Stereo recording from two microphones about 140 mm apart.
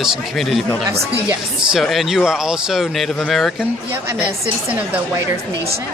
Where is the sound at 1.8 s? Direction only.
Centre (ahead or behind).